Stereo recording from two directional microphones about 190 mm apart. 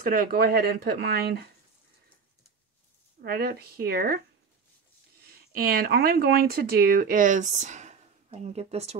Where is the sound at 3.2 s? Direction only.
55° right (ahead or behind).